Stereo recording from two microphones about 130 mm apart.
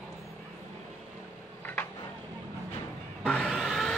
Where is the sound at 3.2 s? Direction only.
10° left (ahead or behind).